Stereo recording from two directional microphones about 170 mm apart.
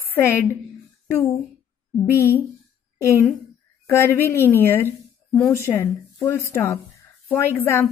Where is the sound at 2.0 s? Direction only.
15° left (ahead or behind).